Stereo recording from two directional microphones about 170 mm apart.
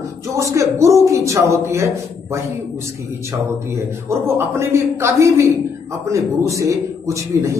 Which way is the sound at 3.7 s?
15° right (ahead or behind).